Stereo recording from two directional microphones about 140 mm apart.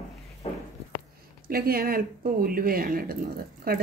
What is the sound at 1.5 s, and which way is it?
Speech, 90° right.